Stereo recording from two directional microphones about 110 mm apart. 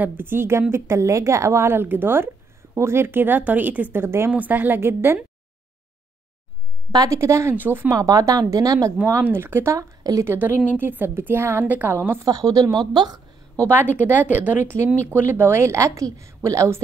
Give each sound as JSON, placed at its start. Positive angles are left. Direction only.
{"t": 0.0, "sound": "speech", "side_deg": -20}
{"t": 6.9, "sound": "speech", "side_deg": -30}
{"t": 7.9, "sound": "speech", "side_deg": -30}
{"t": 8.9, "sound": "speech", "side_deg": -20}
{"t": 10.3, "sound": "speech", "side_deg": -20}
{"t": 12.3, "sound": "speech", "side_deg": -35}
{"t": 13.9, "sound": "speech", "side_deg": -15}